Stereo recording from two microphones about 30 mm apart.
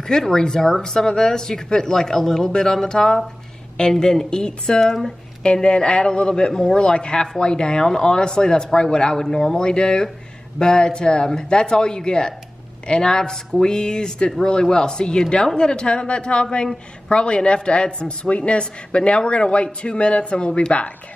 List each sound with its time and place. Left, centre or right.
0.3 s a man's voice: left
4.3 s a man's voice: left
9.2 s speech: centre
9.6 s a man's voice: left